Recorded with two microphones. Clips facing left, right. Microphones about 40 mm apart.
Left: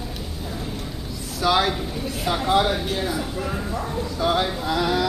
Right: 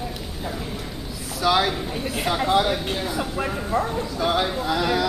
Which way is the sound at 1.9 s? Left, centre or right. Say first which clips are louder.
Right 2 dB; right.